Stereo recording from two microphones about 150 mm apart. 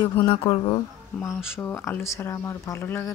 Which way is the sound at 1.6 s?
15° left (ahead or behind).